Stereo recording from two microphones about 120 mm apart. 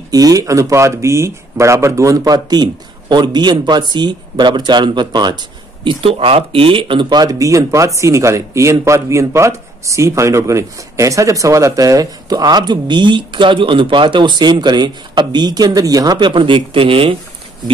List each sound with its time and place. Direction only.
0.1 s speech: 30° right (ahead or behind)
5.9 s speech: 50° right (ahead or behind)